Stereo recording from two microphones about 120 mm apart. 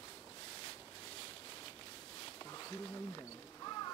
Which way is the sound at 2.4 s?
30° left (ahead or behind).